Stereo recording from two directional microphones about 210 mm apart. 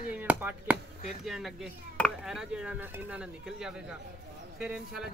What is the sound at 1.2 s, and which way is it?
Speech, centre (ahead or behind).